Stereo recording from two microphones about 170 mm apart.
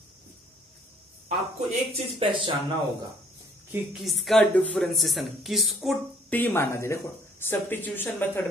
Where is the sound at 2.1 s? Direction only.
30° right (ahead or behind).